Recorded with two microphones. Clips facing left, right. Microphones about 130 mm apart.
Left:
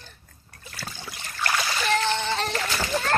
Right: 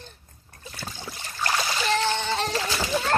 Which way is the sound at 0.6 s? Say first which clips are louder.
Right 1 dB; 20° right (ahead or behind).